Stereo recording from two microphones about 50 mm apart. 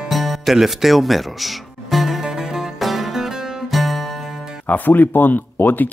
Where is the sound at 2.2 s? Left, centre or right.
Centre.